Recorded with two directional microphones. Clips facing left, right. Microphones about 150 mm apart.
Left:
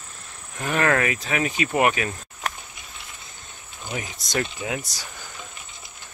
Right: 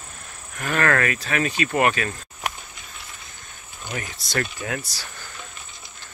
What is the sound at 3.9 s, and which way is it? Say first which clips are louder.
Speech: left 1 dB; 15° left (ahead or behind).